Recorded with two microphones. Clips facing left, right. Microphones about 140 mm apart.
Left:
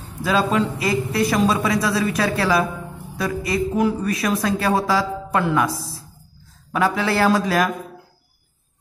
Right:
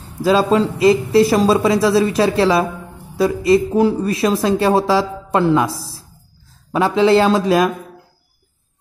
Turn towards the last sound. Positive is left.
turn(degrees=-20)  # may be behind; listen again after turning